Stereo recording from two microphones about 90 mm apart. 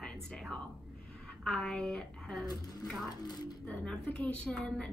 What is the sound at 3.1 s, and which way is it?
Speech, 50° left (ahead or behind).